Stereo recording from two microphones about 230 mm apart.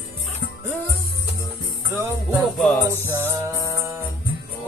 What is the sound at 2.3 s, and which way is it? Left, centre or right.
Music, centre.